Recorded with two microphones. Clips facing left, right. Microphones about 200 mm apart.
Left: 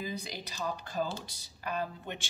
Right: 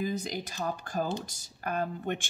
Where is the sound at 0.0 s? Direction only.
50° right (ahead or behind).